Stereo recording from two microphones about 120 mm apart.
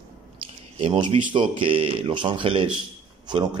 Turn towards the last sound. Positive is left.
turn(degrees=-35)  # may be behind; listen again after turning